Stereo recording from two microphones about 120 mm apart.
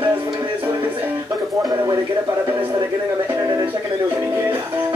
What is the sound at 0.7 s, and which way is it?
Music, 15° right (ahead or behind).